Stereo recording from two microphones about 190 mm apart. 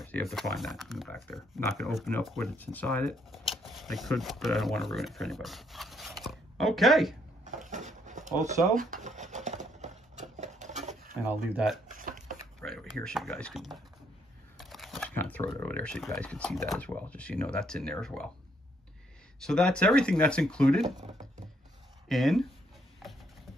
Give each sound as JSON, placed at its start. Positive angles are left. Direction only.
{"t": 0.0, "sound": "speech", "side_deg": 5}
{"t": 7.4, "sound": "drawer open or close", "side_deg": -40}
{"t": 8.7, "sound": "a sound", "side_deg": -40}
{"t": 11.2, "sound": "speech", "side_deg": -5}
{"t": 11.9, "sound": "a sound", "side_deg": -45}
{"t": 12.5, "sound": "speech", "side_deg": 5}
{"t": 14.6, "sound": "shuffling cards", "side_deg": 0}
{"t": 15.6, "sound": "speech", "side_deg": 5}
{"t": 19.4, "sound": "speech", "side_deg": 5}
{"t": 21.0, "sound": "speech", "side_deg": -40}
{"t": 22.1, "sound": "speech", "side_deg": 0}